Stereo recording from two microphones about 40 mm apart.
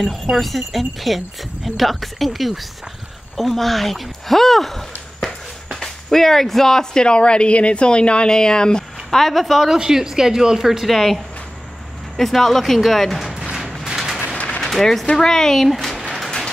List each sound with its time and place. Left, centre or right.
0.0 s speech: centre
9.1 s speech: centre
9.7 s speech: centre
10.9 s speech: centre
12.2 s speech: centre
13.6 s a sound: centre
14.6 s speech: centre